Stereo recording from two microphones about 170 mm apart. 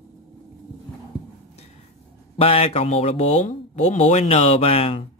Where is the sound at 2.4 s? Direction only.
35° left (ahead or behind).